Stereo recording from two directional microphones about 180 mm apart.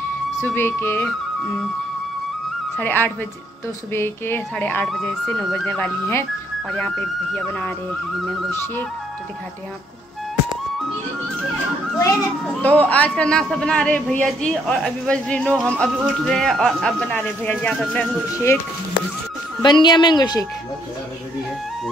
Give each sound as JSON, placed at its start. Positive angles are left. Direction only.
{"t": 0.4, "sound": "speech", "side_deg": 10}
{"t": 2.8, "sound": "speech", "side_deg": 10}
{"t": 12.3, "sound": "speech", "side_deg": 10}
{"t": 19.6, "sound": "speech", "side_deg": 25}